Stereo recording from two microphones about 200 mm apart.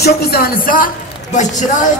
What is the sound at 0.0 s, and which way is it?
Speech, 50° left (ahead or behind).